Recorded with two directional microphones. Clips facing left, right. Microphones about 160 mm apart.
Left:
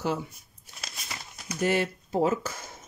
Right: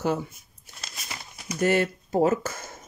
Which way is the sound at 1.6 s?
55° right (ahead or behind).